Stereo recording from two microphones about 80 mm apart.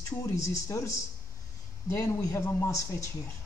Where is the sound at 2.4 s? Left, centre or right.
Left.